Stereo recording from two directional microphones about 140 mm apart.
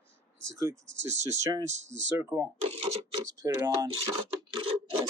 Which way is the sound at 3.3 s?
20° right (ahead or behind).